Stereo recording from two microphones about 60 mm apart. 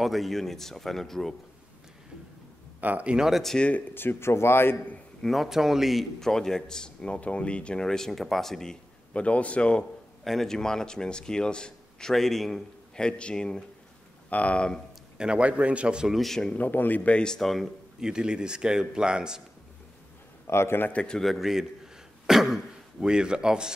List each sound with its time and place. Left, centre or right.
0.0 s speech: centre
2.8 s a man's voice: right
3.2 s speech: centre
3.9 s speech: left
5.2 s a man's voice: centre
9.1 s speech: left
10.2 s a man's voice: centre
15.1 s a man's voice: centre
16.1 s speech: centre
16.4 s speech: left; by 17.6 s centre
18.0 s a man's voice: centre
20.4 s a man's voice: left
20.9 s a man's voice: centre
21.2 s speech: centre